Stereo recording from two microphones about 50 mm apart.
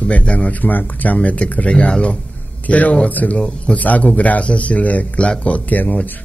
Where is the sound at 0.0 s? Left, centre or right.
Left.